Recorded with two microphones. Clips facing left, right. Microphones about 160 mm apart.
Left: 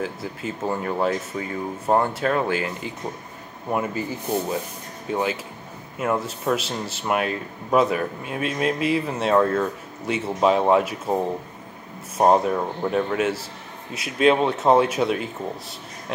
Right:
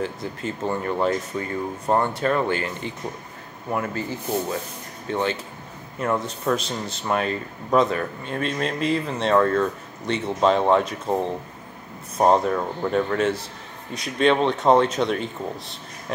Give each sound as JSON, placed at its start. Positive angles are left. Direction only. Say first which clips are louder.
{"t": 0.0, "sound": "speech", "louder": "right 1 dB", "side_deg": 5}
{"t": 3.7, "sound": "speech", "louder": "left 1 dB", "side_deg": 15}
{"t": 5.1, "sound": "speech", "louder": "even", "side_deg": 5}
{"t": 12.2, "sound": "speech", "louder": "left 1 dB", "side_deg": 5}